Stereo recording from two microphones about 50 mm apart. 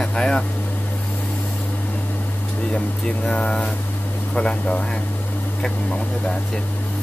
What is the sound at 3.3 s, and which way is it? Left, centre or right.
Speech, centre.